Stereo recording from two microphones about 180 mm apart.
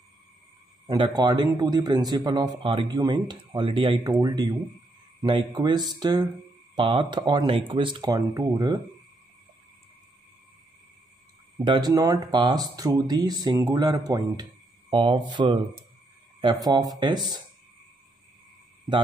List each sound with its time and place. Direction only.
0.8 s speech: 25° right (ahead or behind)
11.6 s speech: 25° right (ahead or behind)
16.6 s speech: 20° right (ahead or behind)